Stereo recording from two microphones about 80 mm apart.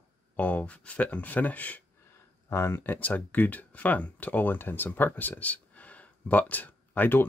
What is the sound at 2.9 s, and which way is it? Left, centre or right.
Speech, centre.